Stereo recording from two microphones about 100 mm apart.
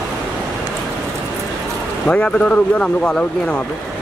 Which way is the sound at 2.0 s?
10° left (ahead or behind).